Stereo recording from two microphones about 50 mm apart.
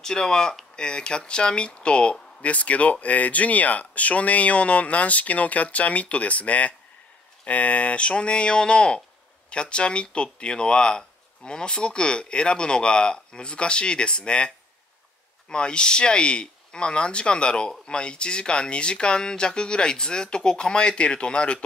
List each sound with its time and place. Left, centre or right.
0.0 s speech: centre
15.5 s speech: centre